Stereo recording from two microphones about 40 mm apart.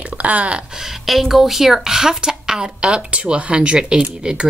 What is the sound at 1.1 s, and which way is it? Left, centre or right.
A woman's voice, centre.